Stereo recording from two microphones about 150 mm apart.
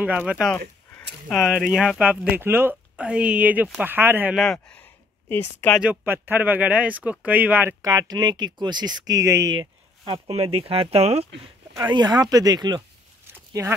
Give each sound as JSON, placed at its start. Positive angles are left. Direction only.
{"t": 0.0, "sound": "speech", "side_deg": -10}
{"t": 4.4, "sound": "speech", "side_deg": 5}
{"t": 5.8, "sound": "speech", "side_deg": -10}
{"t": 7.8, "sound": "speech", "side_deg": -25}
{"t": 11.7, "sound": "speech", "side_deg": -30}